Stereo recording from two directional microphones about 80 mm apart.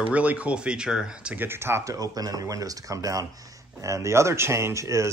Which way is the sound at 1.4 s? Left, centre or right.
Right.